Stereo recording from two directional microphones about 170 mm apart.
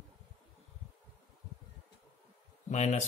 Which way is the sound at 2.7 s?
40° left (ahead or behind).